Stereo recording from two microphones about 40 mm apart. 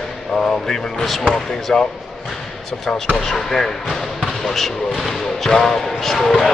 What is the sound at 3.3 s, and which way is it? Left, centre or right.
Speech, centre.